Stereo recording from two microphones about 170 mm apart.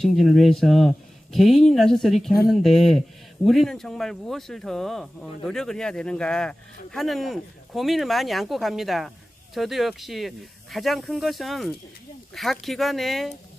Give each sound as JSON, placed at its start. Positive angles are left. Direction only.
{"t": 0.0, "sound": "speech", "side_deg": 0}